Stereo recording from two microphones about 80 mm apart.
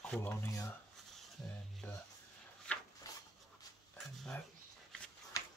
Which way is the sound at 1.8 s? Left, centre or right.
Left.